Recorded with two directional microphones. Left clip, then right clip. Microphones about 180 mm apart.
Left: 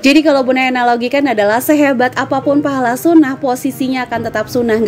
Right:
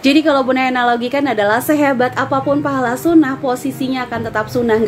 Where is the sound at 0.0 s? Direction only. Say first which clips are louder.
Left 3 dB; 40° left (ahead or behind).